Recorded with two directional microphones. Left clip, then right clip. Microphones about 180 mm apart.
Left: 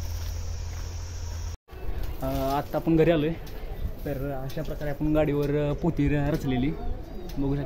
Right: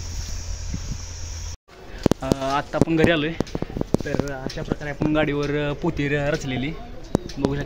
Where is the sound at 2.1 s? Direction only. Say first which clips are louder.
Right 4 dB; 5° right (ahead or behind).